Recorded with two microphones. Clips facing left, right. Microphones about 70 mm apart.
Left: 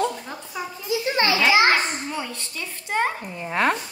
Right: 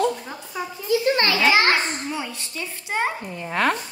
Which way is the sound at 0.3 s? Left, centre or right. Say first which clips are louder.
Right 1 dB; centre.